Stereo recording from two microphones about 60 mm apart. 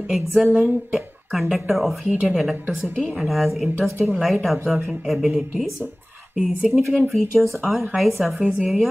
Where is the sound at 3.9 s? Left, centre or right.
Right.